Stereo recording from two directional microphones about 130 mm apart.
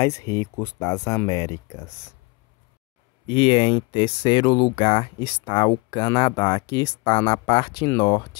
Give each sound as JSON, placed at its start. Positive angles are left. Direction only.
{"t": 0.0, "sound": "speech", "side_deg": 25}
{"t": 3.3, "sound": "speech", "side_deg": 40}